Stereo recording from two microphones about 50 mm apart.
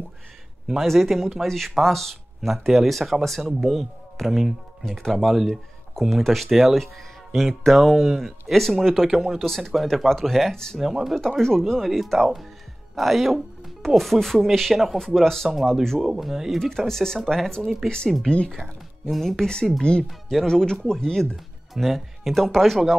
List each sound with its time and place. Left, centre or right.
0.7 s speech: centre
11.1 s speech: centre
15.0 s speech: centre
18.6 s speech: centre
20.1 s speech: centre
20.4 s speech: centre
21.7 s speech: centre